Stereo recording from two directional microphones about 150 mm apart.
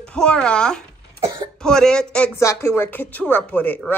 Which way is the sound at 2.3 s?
20° left (ahead or behind).